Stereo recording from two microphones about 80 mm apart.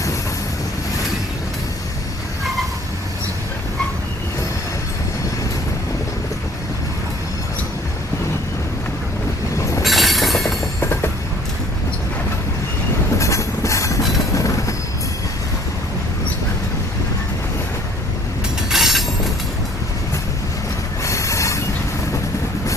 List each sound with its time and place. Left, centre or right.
9.8 s train: centre
10.8 s train: left
13.2 s train: left
18.7 s train: centre
21.0 s a sound: left